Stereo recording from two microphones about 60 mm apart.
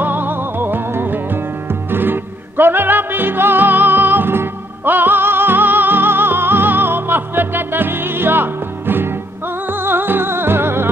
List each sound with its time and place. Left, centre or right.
0.0 s music: right